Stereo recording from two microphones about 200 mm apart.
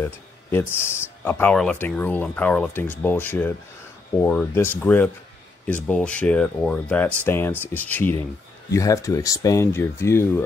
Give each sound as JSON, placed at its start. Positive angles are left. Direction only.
{"t": 0.0, "sound": "speech", "side_deg": 10}